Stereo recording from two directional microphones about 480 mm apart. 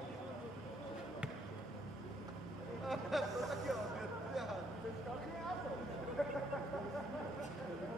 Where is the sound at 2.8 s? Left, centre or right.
Centre.